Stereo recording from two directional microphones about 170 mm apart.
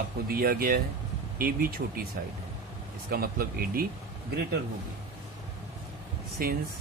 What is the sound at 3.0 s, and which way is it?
Speech, 60° right (ahead or behind).